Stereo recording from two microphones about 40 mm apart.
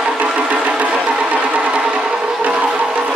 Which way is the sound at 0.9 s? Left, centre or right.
Right.